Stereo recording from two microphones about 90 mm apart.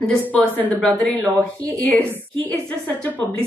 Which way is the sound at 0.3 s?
15° left (ahead or behind).